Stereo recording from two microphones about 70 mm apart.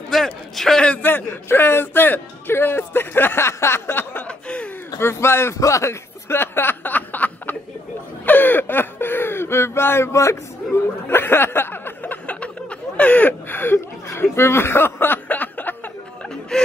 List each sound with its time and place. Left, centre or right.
0.1 s a sound: centre
1.0 s a man's voice: left
5.6 s chuckle: left
8.3 s speech: left
16.5 s chuckle: centre